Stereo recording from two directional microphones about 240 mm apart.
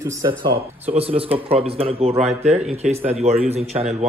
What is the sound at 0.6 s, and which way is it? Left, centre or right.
Speech, right.